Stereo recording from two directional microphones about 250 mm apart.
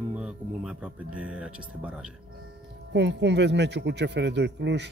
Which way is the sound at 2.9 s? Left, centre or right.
Right.